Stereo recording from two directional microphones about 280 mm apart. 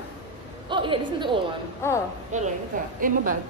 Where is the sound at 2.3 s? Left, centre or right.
Right.